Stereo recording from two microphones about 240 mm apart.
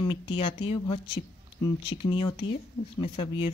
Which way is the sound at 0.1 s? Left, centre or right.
Left.